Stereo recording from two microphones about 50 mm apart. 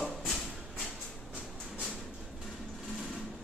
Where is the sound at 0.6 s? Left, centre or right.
Centre.